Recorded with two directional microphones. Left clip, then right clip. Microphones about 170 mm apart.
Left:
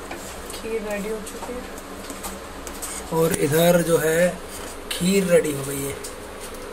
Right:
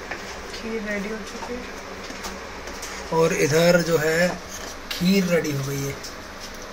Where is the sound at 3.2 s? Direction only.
Centre (ahead or behind).